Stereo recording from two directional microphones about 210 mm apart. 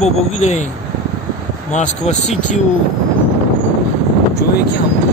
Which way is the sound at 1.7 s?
35° left (ahead or behind).